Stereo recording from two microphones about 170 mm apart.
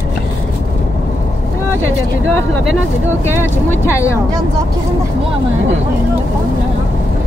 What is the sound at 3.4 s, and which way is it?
Speech, 15° left (ahead or behind).